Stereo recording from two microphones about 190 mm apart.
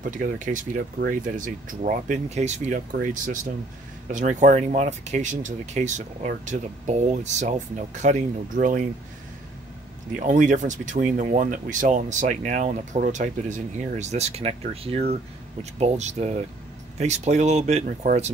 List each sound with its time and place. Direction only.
0.0 s speech: 45° right (ahead or behind)
10.1 s speech: 40° right (ahead or behind)